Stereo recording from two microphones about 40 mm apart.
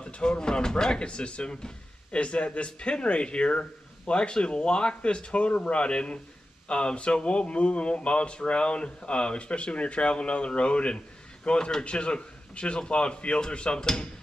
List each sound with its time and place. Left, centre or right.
0.0 s a man's voice: left